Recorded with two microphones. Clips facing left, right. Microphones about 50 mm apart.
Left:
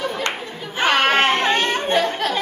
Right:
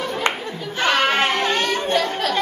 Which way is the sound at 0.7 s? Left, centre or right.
Left.